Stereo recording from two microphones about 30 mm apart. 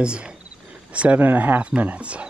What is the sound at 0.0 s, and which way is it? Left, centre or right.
Speech, right.